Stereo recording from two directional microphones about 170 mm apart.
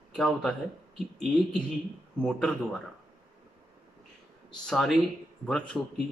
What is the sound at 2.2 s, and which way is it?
Speech, 5° left (ahead or behind).